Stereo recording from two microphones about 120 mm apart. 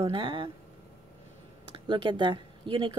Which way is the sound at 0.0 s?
45° right (ahead or behind).